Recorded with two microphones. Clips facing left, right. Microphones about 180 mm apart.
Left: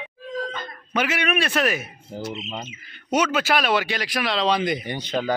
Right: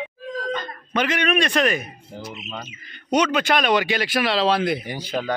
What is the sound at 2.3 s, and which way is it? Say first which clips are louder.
Speech: left 1 dB; 20° left (ahead or behind).